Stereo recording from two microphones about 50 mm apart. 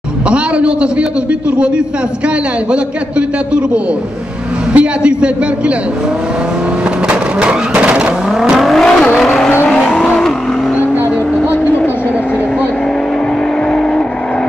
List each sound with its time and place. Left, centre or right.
0.3 s a man's voice: right
2.2 s a man's voice: right
7.1 s a sound: right
8.5 s vehicle: centre
9.8 s vehicle: centre